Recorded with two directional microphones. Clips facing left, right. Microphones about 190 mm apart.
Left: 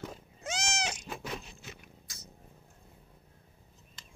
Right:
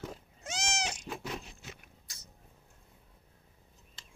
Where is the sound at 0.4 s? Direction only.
90° left.